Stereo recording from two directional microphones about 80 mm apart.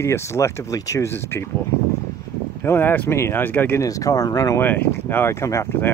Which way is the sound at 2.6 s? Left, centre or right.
Left.